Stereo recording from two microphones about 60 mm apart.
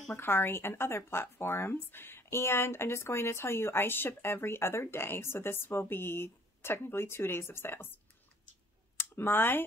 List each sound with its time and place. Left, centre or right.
0.1 s speech: left